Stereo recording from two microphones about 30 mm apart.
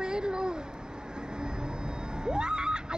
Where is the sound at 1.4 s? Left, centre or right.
Right.